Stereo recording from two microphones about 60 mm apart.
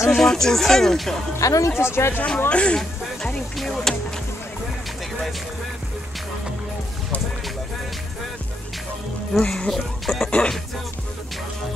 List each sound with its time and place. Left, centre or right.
0.1 s speech: centre
1.4 s speech: left
1.7 s speech: left
2.5 s speech: centre
3.5 s music: centre
9.3 s speech: centre